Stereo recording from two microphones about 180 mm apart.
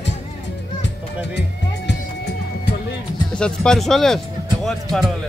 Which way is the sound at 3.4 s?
5° left (ahead or behind).